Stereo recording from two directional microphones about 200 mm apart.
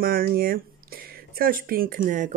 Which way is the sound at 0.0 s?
45° right (ahead or behind).